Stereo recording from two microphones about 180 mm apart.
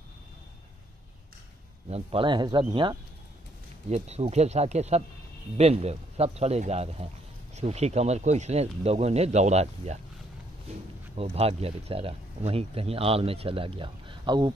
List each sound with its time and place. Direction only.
1.9 s speech: 30° right (ahead or behind)
3.9 s speech: 35° right (ahead or behind)
11.1 s speech: 35° right (ahead or behind)